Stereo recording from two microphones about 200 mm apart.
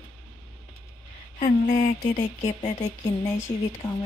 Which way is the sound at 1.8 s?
35° left (ahead or behind).